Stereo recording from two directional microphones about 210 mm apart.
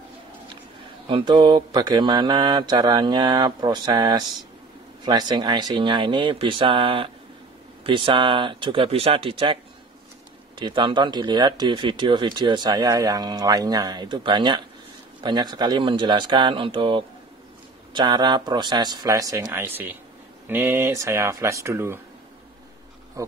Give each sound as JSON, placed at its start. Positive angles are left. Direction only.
{"t": 1.0, "sound": "speech", "side_deg": -25}
{"t": 10.6, "sound": "speech", "side_deg": -20}
{"t": 23.2, "sound": "speech", "side_deg": -15}